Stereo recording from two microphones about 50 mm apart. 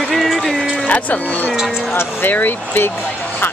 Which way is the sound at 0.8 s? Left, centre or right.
Left.